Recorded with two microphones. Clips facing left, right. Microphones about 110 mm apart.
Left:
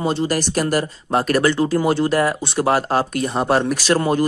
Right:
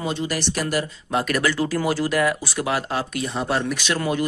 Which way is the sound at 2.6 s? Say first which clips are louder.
Left 8 dB; 40° left (ahead or behind).